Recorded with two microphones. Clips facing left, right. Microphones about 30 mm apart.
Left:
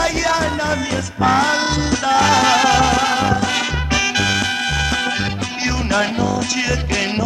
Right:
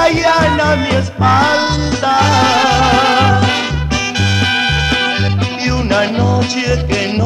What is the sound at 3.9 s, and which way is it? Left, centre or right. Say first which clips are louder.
Swing music: left 1 dB; centre.